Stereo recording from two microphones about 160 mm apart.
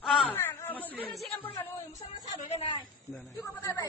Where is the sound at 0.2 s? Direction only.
10° left (ahead or behind).